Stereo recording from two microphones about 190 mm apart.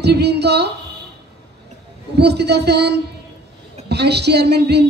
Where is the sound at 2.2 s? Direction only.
60° right (ahead or behind).